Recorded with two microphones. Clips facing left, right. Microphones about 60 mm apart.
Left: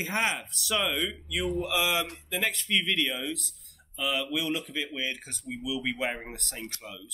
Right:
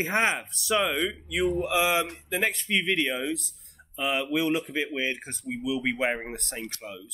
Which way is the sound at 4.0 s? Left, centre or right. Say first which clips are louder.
Right 4 dB; right.